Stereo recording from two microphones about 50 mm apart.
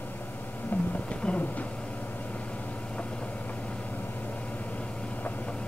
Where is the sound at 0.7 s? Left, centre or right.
Left.